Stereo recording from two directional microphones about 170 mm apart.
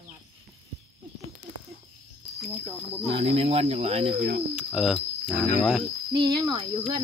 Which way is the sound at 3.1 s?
35° right (ahead or behind).